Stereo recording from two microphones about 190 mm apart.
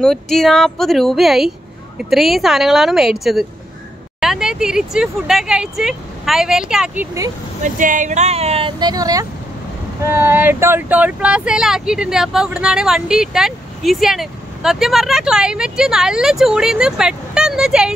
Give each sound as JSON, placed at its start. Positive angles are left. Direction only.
{"t": 0.0, "sound": "speech", "side_deg": 0}
{"t": 7.6, "sound": "speech", "side_deg": -40}